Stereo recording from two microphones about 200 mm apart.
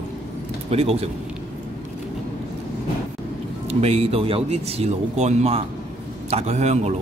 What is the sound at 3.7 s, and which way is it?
Speech, 30° right (ahead or behind).